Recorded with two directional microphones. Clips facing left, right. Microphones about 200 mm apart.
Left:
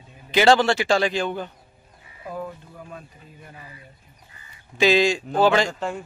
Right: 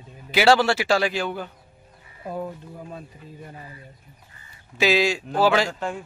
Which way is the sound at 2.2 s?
35° right (ahead or behind).